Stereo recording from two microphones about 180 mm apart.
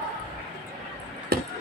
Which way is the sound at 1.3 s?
60° right (ahead or behind).